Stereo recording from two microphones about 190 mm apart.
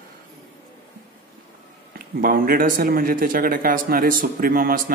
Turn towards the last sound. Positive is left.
turn(degrees=-50)  # may be behind; listen again after turning